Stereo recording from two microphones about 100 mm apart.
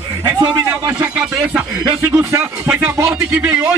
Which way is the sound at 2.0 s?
25° right (ahead or behind).